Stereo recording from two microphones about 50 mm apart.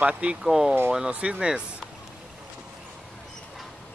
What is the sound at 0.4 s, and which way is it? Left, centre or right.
Speech, centre.